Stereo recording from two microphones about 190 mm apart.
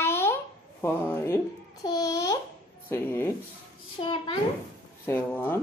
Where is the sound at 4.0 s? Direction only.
25° left (ahead or behind).